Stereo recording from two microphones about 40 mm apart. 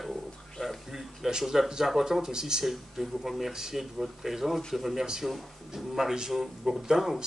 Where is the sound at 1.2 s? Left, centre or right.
Centre.